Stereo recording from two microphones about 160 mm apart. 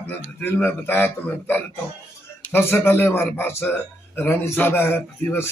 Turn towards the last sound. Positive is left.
turn(degrees=15)  # may be behind; listen again after turning